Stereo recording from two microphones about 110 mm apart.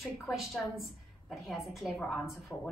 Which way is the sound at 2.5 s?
20° left (ahead or behind).